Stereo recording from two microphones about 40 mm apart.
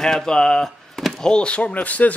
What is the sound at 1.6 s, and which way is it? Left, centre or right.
Speech, left.